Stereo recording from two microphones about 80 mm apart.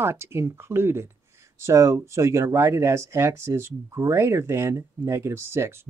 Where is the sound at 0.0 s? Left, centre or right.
Right.